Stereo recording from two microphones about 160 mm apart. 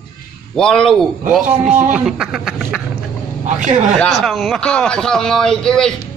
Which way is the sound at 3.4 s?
50° right (ahead or behind).